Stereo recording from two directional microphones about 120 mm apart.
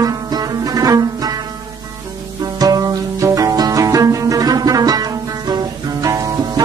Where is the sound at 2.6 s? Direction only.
30° right (ahead or behind).